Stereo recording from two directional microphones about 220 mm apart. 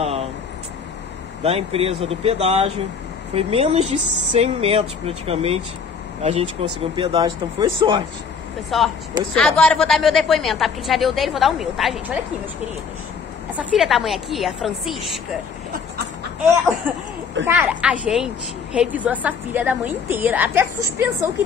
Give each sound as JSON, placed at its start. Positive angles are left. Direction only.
{"t": 0.0, "sound": "vehicle", "side_deg": -30}
{"t": 1.4, "sound": "speech", "side_deg": -25}
{"t": 8.6, "sound": "a woman's voice", "side_deg": 0}
{"t": 13.6, "sound": "a woman's voice", "side_deg": 0}
{"t": 17.5, "sound": "a woman's voice", "side_deg": -5}